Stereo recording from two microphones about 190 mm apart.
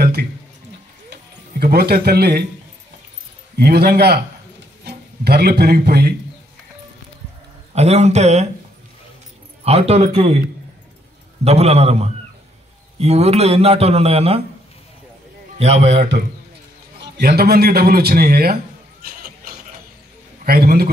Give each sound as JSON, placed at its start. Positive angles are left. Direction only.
{"t": 0.0, "sound": "a sound", "side_deg": -55}
{"t": 1.1, "sound": "music", "side_deg": -55}
{"t": 3.5, "sound": "a man's voice", "side_deg": -55}
{"t": 7.7, "sound": "speech", "side_deg": -35}
{"t": 9.7, "sound": "speech", "side_deg": -35}
{"t": 11.4, "sound": "speech", "side_deg": -35}
{"t": 15.6, "sound": "speech", "side_deg": -35}
{"t": 17.0, "sound": "a man's voice", "side_deg": -55}
{"t": 19.0, "sound": "a sound", "side_deg": -50}
{"t": 20.4, "sound": "a man's voice", "side_deg": -50}